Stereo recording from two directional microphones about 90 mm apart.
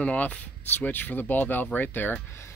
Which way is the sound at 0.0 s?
15° left (ahead or behind).